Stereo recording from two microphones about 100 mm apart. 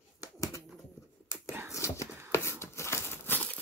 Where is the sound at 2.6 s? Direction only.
25° left (ahead or behind).